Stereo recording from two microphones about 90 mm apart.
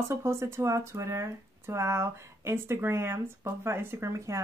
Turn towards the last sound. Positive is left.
turn(degrees=-35)  # may be behind; listen again after turning